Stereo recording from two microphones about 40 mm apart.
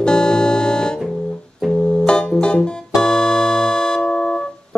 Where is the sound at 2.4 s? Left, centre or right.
Left.